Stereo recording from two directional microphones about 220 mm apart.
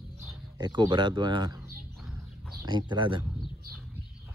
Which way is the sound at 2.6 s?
20° right (ahead or behind).